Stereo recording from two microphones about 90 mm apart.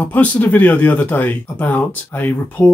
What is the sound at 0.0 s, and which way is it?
Speech, 20° left (ahead or behind).